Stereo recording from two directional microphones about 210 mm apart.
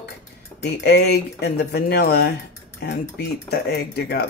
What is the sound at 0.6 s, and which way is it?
Speech, 50° left (ahead or behind).